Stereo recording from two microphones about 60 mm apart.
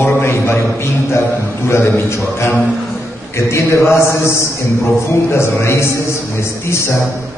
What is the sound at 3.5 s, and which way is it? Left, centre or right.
A man's voice, left.